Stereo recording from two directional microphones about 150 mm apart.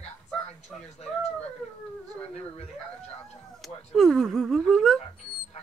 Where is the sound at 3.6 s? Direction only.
Centre (ahead or behind).